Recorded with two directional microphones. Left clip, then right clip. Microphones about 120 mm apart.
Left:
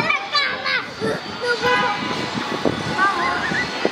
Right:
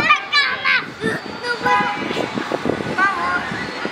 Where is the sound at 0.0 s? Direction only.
25° right (ahead or behind).